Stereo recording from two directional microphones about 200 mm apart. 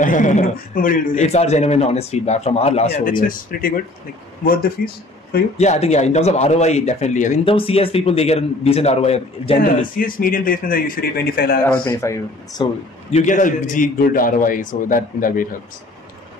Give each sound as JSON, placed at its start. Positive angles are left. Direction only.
{"t": 0.0, "sound": "a man's voice", "side_deg": 40}
{"t": 5.6, "sound": "a man's voice", "side_deg": 35}
{"t": 9.9, "sound": "a man's voice", "side_deg": 45}
{"t": 11.6, "sound": "speech", "side_deg": 10}
{"t": 13.1, "sound": "a man's voice", "side_deg": 40}